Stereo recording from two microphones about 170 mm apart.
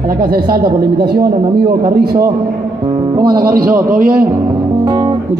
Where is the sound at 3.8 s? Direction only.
55° right (ahead or behind).